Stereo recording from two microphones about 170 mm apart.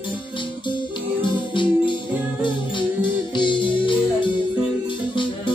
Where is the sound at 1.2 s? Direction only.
30° left (ahead or behind).